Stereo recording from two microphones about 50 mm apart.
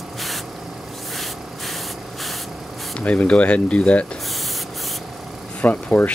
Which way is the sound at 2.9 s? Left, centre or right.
Left.